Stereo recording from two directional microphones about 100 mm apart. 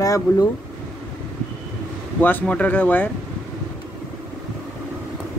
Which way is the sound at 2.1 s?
20° left (ahead or behind).